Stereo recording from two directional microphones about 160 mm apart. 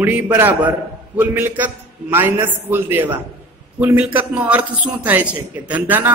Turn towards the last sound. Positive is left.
turn(degrees=-10)  # may be behind; listen again after turning